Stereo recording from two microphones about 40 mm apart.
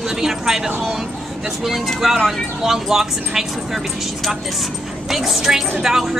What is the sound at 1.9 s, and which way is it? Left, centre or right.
A woman's voice, centre.